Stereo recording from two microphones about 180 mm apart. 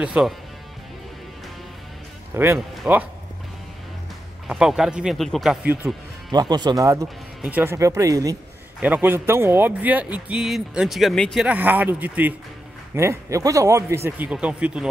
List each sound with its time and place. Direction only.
0.0 s speech: 5° right (ahead or behind)
2.3 s a man's voice: 15° right (ahead or behind)
4.5 s speech: 5° right (ahead or behind)
6.3 s a man's voice: 25° right (ahead or behind); by 11.4 s centre (ahead or behind)
11.4 s a man's voice: 10° right (ahead or behind)